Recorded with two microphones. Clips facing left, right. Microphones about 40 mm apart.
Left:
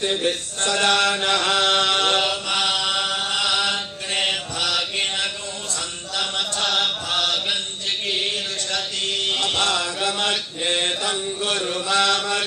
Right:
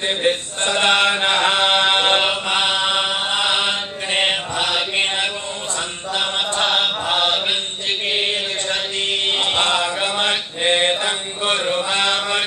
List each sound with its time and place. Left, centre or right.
0.0 s chant: right